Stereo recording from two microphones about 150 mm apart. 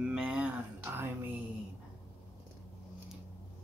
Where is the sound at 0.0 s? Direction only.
5° right (ahead or behind).